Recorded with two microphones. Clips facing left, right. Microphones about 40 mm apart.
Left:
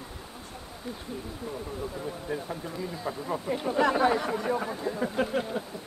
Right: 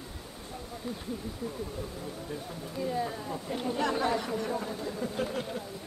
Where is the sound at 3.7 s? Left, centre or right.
Left.